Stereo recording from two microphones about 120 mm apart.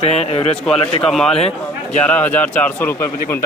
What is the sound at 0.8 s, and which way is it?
Speech, 45° left (ahead or behind).